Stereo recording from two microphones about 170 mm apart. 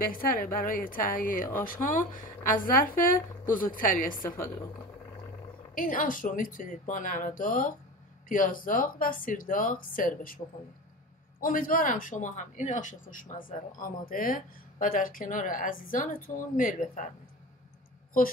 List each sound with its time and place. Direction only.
0.0 s speech: 55° left (ahead or behind)
5.8 s speech: 55° left (ahead or behind)
11.4 s speech: 55° left (ahead or behind)